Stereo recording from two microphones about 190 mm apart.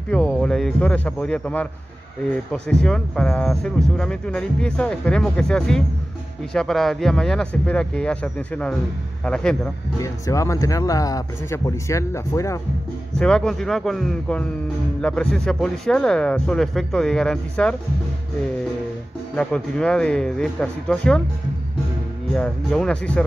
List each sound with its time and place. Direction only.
0.1 s speech: 5° left (ahead or behind)
9.9 s speech: 15° left (ahead or behind)
13.2 s speech: 5° left (ahead or behind)
19.3 s speech: 5° left (ahead or behind)
22.3 s speech: 5° left (ahead or behind)